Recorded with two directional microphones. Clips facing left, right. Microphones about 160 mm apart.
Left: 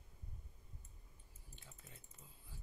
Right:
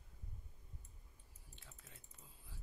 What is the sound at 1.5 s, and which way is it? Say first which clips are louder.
Typing: left 2 dB; centre (ahead or behind).